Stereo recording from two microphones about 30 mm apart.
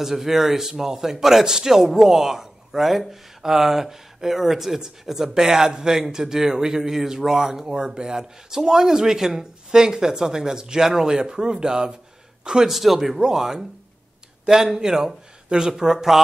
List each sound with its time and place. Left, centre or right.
0.0 s a man's voice: centre
12.6 s speech: centre
13.2 s speech: centre